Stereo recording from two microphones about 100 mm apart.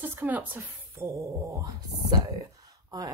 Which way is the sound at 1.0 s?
30° right (ahead or behind).